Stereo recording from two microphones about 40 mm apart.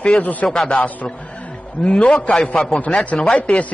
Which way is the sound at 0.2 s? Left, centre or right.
Left.